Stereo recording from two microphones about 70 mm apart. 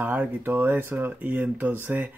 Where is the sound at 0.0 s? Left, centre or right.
Right.